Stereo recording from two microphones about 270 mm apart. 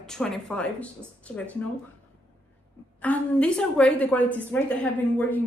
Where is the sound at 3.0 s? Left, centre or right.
Centre.